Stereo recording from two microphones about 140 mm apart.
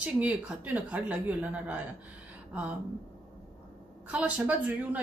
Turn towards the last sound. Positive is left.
turn(degrees=-10)  # may be behind; listen again after turning